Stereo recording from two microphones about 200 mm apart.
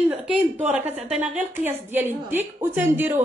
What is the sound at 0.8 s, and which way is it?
Speech, 30° right (ahead or behind).